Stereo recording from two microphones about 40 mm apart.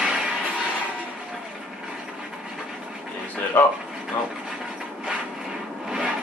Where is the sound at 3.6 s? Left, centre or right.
Left.